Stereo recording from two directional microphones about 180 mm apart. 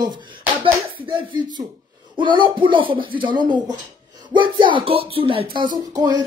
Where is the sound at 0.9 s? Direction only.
30° right (ahead or behind).